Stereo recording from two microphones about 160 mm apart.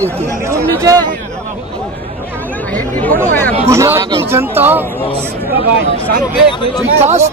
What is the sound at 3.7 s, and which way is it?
Speech, 15° right (ahead or behind).